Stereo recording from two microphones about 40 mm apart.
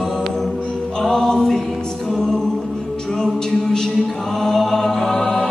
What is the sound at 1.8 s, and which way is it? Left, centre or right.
A capella, centre.